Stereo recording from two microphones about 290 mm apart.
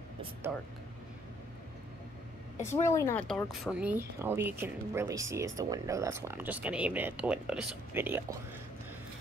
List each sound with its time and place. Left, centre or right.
2.6 s speech: centre